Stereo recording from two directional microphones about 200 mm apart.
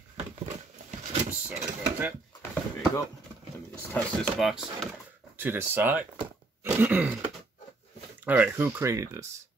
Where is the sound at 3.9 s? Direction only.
5° left (ahead or behind).